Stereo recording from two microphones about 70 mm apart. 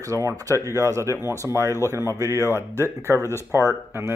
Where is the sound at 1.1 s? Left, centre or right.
Left.